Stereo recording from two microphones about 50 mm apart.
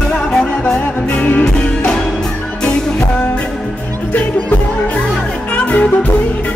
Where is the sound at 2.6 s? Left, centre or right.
Centre.